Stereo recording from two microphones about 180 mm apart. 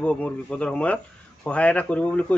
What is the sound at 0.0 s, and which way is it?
Speech, 5° left (ahead or behind).